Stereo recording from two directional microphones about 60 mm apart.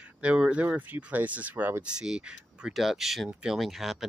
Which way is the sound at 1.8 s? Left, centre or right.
Centre.